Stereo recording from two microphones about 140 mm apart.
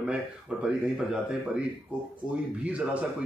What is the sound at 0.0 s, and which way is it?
Speech, 5° right (ahead or behind).